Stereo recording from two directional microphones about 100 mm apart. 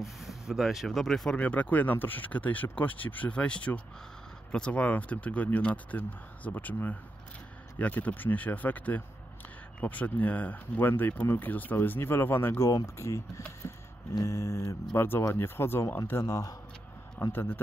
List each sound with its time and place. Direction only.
0.0 s speech: centre (ahead or behind)
1.4 s speech: 15° left (ahead or behind)
14.2 s speech: 30° left (ahead or behind)
16.1 s speech: 35° left (ahead or behind)
17.2 s speech: 20° left (ahead or behind)